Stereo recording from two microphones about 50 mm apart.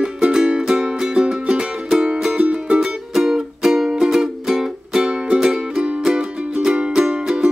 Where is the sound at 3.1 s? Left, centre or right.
Centre.